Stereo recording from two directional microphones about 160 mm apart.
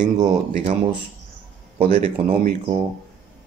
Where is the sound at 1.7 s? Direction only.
40° right (ahead or behind).